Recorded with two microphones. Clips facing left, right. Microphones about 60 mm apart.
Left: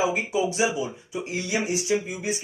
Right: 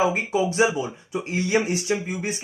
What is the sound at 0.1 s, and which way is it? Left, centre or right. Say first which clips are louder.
Speech: right 2 dB; right.